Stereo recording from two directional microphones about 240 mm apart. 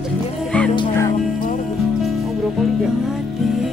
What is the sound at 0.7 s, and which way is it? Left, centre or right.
Music, centre.